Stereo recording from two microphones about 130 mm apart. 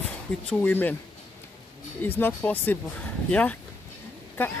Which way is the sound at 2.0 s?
15° left (ahead or behind).